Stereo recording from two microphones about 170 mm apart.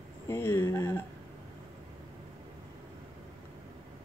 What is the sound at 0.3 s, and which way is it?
Speech, 15° left (ahead or behind).